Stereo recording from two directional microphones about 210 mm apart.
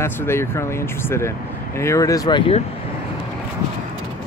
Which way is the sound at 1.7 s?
15° left (ahead or behind).